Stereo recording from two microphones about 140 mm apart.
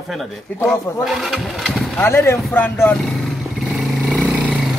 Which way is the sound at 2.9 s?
Centre (ahead or behind).